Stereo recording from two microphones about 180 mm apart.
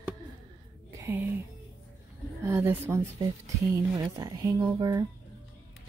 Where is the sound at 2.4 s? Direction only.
15° right (ahead or behind).